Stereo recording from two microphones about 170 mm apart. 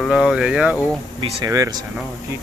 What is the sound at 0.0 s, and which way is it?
Speech, centre (ahead or behind).